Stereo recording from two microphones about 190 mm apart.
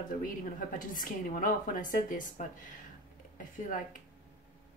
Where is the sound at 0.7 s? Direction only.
45° left (ahead or behind).